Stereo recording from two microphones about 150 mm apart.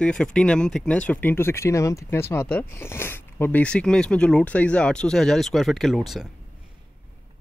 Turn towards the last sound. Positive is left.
turn(degrees=0)  # may be behind; listen again after turning